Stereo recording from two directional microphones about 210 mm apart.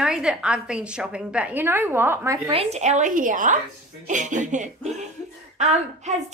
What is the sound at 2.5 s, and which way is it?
A woman's voice, 30° right (ahead or behind).